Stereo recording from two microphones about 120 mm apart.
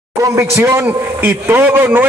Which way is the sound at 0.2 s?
25° right (ahead or behind).